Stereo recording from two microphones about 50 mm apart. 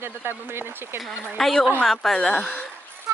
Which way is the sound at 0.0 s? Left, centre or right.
Right.